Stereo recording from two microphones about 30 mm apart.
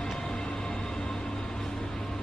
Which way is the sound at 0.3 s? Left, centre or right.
Left.